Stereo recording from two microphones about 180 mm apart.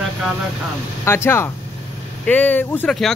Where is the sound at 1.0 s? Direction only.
15° left (ahead or behind).